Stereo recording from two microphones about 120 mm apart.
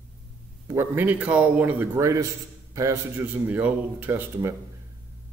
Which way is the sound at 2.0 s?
25° right (ahead or behind).